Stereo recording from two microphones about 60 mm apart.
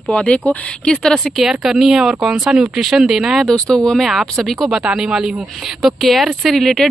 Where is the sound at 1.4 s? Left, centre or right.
Centre.